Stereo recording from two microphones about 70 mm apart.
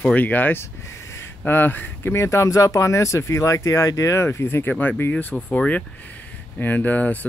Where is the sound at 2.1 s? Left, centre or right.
Left.